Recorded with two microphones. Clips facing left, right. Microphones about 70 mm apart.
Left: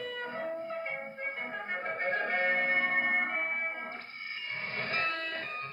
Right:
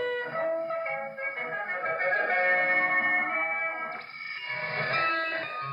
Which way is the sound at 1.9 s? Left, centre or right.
Right.